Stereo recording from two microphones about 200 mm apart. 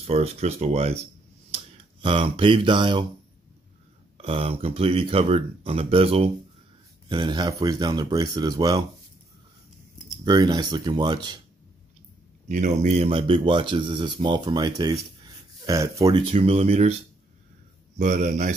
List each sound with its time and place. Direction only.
0.0 s speech: 30° right (ahead or behind)
4.2 s speech: 30° right (ahead or behind)
10.2 s speech: 20° right (ahead or behind)
12.4 s speech: 35° right (ahead or behind)
17.9 s speech: 40° right (ahead or behind)